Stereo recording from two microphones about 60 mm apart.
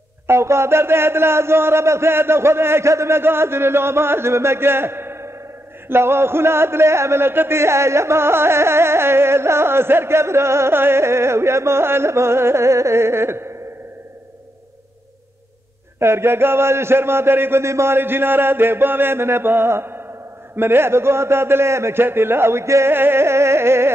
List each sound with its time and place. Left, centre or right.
0.3 s speech: right
16.0 s a sound: right
20.5 s speech: right